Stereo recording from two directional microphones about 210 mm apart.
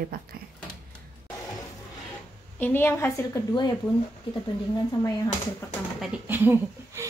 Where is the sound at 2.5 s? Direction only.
10° left (ahead or behind).